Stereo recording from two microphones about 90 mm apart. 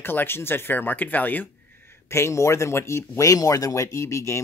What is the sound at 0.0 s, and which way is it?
Speech, 25° left (ahead or behind).